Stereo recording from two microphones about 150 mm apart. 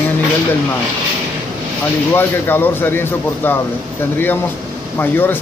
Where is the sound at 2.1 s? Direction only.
15° left (ahead or behind).